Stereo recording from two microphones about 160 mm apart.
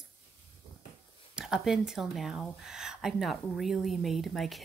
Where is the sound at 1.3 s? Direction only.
5° right (ahead or behind).